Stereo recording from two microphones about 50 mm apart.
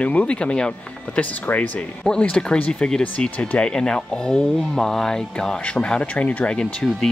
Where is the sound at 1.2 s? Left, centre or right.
Left.